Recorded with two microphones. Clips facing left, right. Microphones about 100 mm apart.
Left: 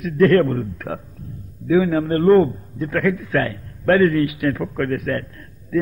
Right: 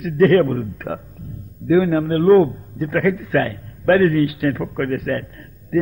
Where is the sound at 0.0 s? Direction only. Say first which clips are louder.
Right 1 dB; 15° right (ahead or behind).